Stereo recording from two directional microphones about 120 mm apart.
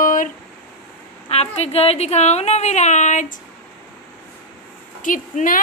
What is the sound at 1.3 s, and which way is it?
A woman's voice, 60° left (ahead or behind).